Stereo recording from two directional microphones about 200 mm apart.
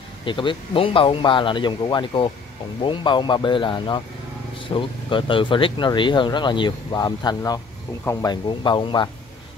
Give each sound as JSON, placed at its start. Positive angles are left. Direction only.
{"t": 0.2, "sound": "speech", "side_deg": 25}